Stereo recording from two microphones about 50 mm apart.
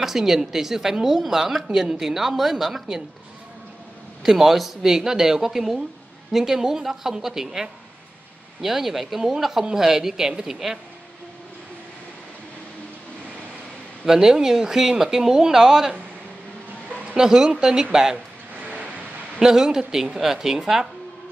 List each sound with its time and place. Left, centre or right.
0.0 s speech: centre
4.2 s speech: centre
14.0 s speech: centre
17.1 s speech: centre
18.6 s vehicle: right
19.4 s speech: centre